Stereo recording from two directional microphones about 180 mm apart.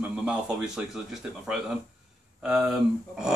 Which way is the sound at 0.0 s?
5° right (ahead or behind).